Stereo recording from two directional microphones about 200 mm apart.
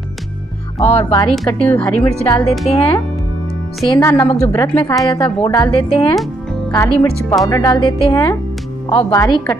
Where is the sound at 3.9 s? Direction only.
15° left (ahead or behind).